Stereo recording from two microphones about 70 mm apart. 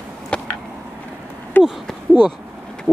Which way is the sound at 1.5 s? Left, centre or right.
Left.